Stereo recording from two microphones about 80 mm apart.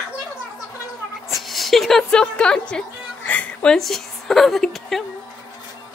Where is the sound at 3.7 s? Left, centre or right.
Centre.